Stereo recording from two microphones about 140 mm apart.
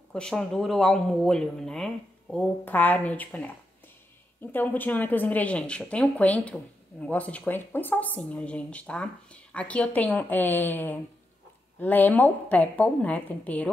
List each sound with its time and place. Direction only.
0.1 s a woman's voice: 5° left (ahead or behind)